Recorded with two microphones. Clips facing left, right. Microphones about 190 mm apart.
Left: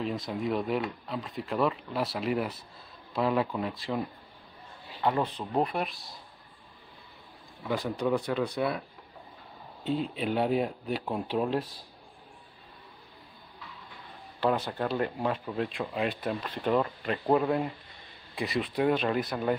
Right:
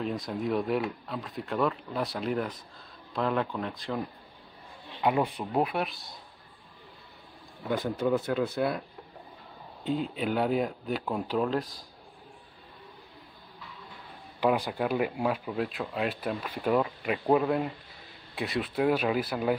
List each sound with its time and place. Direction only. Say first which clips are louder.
0.0 s speech: even; centre (ahead or behind)
5.0 s speech: right 2 dB; 10° right (ahead or behind)
7.7 s speech: right 1 dB; 5° right (ahead or behind)
9.8 s speech: even; centre (ahead or behind)
14.4 s speech: right 2 dB; 10° right (ahead or behind)